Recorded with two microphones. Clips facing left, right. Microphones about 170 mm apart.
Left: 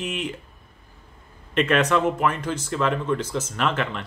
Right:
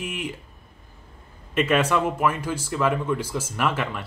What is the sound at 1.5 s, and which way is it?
Speech, 10° right (ahead or behind).